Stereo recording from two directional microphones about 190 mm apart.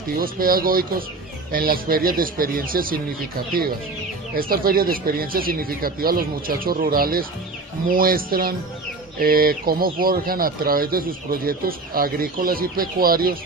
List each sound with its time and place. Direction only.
0.2 s speech: 50° right (ahead or behind)
4.4 s speech: 50° right (ahead or behind)